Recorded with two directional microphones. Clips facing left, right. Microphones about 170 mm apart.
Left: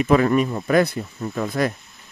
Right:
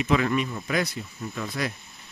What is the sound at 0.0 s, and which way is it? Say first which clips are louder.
Speech: left 7 dB; 45° left (ahead or behind).